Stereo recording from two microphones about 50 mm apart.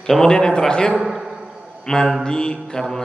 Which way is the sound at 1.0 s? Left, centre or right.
Centre.